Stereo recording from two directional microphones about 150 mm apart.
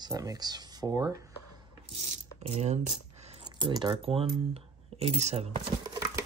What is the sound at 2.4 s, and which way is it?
Speech, 45° right (ahead or behind).